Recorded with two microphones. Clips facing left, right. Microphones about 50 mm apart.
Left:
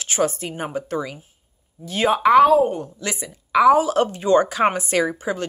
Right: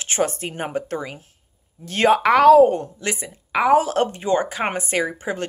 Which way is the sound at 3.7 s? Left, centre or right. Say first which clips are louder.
Even; right.